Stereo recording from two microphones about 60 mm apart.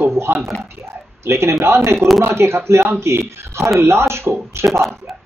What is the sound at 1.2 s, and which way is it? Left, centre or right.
Speech, right.